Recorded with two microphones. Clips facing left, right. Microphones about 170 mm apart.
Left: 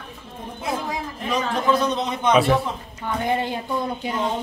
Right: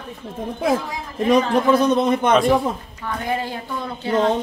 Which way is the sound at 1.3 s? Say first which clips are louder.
Right 5 dB; 55° right (ahead or behind).